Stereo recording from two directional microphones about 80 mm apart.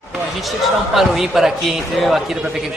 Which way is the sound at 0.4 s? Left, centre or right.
Centre.